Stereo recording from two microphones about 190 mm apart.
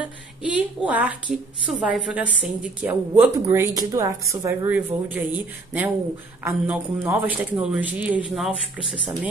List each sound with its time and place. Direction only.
0.0 s a woman's voice: 5° right (ahead or behind)
3.4 s a woman's voice: 15° right (ahead or behind)
6.4 s a woman's voice: 10° right (ahead or behind)